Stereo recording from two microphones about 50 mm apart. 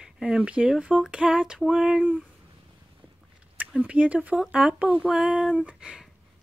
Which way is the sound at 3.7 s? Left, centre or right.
Right.